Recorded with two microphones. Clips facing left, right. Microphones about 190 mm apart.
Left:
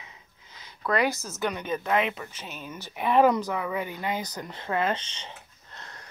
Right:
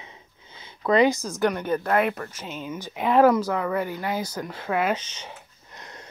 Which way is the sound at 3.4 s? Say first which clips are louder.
Right 4 dB; 15° left (ahead or behind).